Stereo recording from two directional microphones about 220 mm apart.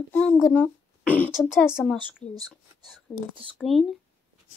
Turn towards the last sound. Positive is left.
turn(degrees=0)  # may be behind; listen again after turning